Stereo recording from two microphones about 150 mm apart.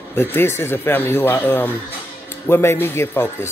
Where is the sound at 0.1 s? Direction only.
15° left (ahead or behind).